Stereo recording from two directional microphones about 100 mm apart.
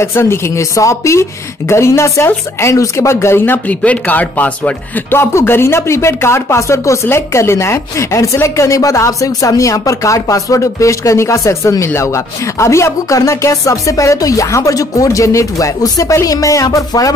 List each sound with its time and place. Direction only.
0.0 s speech: 25° left (ahead or behind)